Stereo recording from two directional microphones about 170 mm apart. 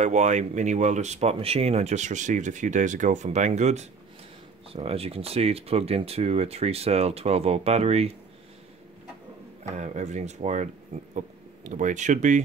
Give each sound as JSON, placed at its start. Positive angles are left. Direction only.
{"t": 0.0, "sound": "speech", "side_deg": -45}
{"t": 9.8, "sound": "speech", "side_deg": -40}